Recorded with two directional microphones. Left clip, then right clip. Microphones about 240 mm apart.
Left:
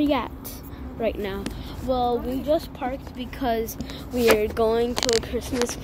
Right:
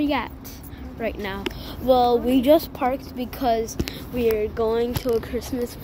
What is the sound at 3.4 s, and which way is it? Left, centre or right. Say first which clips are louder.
Speech: right 3 dB; centre.